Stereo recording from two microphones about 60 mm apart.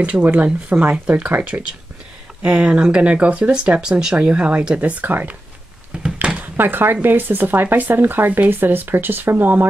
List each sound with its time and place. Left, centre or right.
0.0 s speech: right
1.5 s speech: right
2.4 s speech: centre
6.4 s speech: right